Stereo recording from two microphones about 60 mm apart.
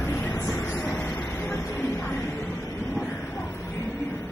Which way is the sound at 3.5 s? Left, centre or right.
Left.